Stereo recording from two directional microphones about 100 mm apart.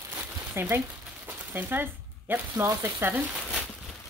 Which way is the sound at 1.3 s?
15° right (ahead or behind).